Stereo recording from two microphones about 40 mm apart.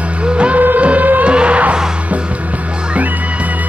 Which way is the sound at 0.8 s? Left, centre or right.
Right.